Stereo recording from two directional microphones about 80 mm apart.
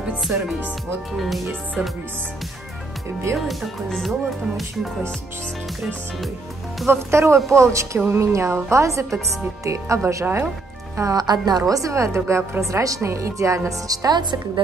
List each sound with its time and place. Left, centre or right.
1.1 s speech: centre
3.3 s speech: centre
6.9 s speech: right
10.2 s speech: right
11.0 s speech: right
11.7 s speech: right